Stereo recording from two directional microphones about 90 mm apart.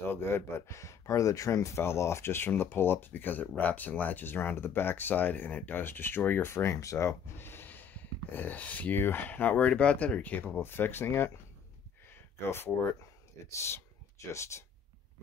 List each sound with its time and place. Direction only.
0.0 s speech: 25° left (ahead or behind)
12.4 s speech: 25° left (ahead or behind)